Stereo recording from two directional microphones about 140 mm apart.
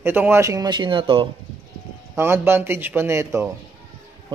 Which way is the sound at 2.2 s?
15° right (ahead or behind).